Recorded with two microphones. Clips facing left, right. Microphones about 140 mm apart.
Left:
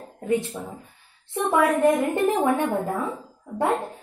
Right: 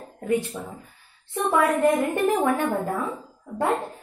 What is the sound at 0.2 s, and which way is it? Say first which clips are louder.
A woman's voice: even; 20° left (ahead or behind).